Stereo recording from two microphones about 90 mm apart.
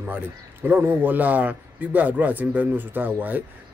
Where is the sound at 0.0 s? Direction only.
20° right (ahead or behind).